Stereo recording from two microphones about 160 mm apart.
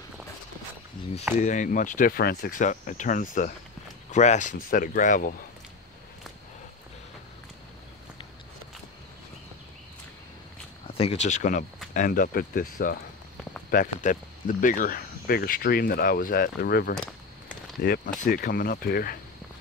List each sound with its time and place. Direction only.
1.4 s speech: 50° left (ahead or behind)
10.9 s speech: 40° left (ahead or behind); by 19.1 s 70° left (ahead or behind)